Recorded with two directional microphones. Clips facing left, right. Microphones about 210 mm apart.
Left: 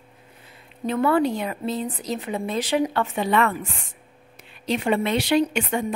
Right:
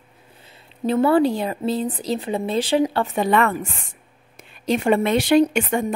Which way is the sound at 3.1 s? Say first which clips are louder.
Right 3 dB; 45° right (ahead or behind).